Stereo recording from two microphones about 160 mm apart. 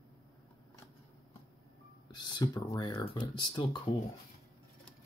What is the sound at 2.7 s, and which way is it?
Speech, 25° left (ahead or behind).